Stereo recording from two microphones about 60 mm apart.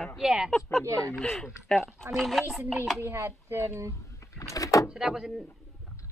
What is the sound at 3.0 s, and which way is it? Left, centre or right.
Speech, right.